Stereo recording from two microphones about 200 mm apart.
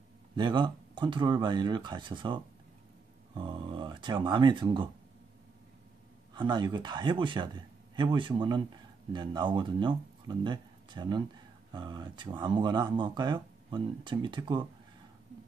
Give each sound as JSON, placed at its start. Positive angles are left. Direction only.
{"t": 0.4, "sound": "speech", "side_deg": -25}
{"t": 6.3, "sound": "speech", "side_deg": -20}